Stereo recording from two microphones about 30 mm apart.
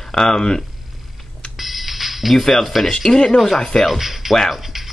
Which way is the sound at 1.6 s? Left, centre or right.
Centre.